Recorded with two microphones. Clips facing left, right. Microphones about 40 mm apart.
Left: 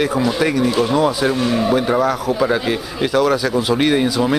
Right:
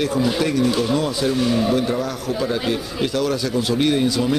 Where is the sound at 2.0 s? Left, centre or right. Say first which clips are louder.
Left 7 dB; centre.